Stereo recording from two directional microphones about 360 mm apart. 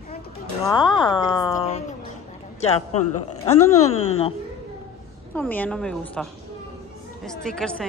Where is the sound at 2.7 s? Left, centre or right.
Left.